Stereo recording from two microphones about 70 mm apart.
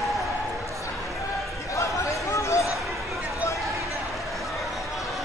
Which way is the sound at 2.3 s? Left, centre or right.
Left.